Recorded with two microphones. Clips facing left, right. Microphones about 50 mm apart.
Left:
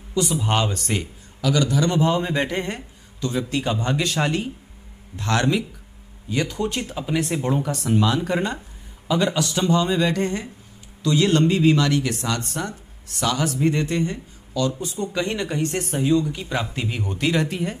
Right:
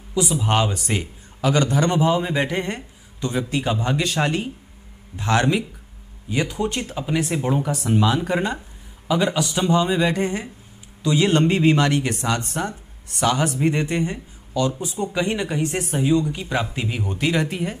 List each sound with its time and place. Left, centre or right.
0.1 s speech: centre
1.4 s a man's voice: right
2.0 s speech: centre
3.2 s a man's voice: right
3.4 s a man's voice: centre